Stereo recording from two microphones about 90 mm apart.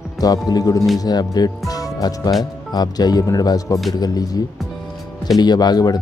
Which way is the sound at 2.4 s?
45° left (ahead or behind).